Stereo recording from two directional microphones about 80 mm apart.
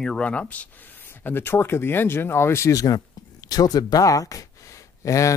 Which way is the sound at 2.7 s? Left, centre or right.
Left.